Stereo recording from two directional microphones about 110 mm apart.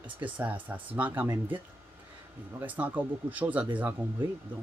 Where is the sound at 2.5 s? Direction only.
15° right (ahead or behind).